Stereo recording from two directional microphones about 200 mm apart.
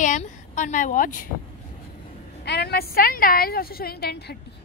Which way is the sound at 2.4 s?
55° left (ahead or behind).